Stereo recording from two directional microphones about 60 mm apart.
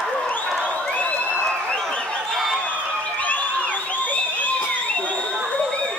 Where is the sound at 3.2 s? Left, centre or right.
Left.